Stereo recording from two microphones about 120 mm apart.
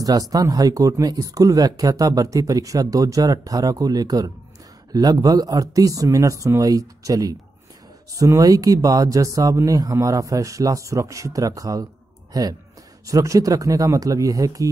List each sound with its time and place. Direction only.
0.0 s speech: 30° right (ahead or behind)